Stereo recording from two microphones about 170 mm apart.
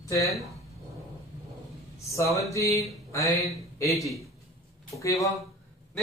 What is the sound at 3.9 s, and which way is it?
Speech, centre (ahead or behind).